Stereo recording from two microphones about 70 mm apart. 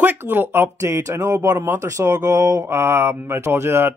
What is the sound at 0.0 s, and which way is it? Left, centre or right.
Speech, right.